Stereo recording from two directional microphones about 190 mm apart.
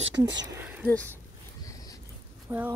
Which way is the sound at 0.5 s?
10° right (ahead or behind).